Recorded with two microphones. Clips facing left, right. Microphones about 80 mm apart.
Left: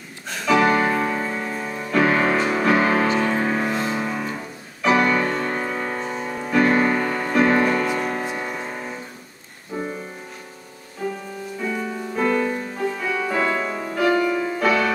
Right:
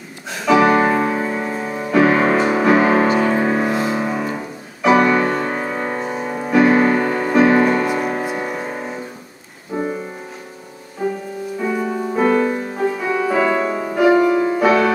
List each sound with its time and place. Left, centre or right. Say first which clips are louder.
0.3 s music: right 4 dB; centre
11.0 s music: right 6 dB; centre
12.3 s music: right 3 dB; centre